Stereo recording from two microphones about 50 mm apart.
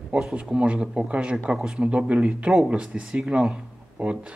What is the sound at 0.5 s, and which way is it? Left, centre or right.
Speech, right.